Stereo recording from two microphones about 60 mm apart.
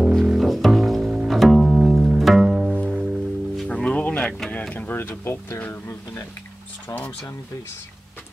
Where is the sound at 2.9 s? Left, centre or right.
Centre.